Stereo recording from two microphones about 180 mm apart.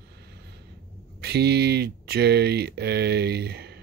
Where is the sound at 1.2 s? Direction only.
65° right (ahead or behind).